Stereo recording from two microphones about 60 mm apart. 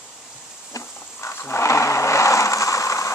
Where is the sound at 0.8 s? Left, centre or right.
Left.